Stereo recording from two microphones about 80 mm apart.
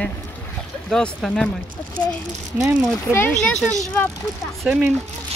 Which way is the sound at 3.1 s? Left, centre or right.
Left.